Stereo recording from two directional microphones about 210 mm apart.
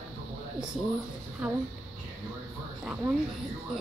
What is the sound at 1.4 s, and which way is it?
Speech, 5° right (ahead or behind).